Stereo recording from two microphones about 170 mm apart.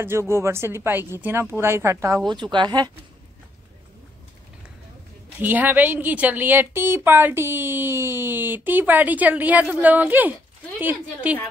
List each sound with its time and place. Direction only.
0.0 s a woman's voice: 15° right (ahead or behind)
5.4 s a woman's voice: 10° right (ahead or behind)